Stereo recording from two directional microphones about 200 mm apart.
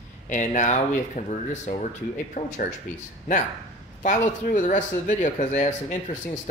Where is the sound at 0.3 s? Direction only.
40° left (ahead or behind).